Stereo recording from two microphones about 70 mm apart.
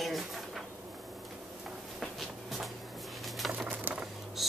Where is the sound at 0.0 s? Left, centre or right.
Centre.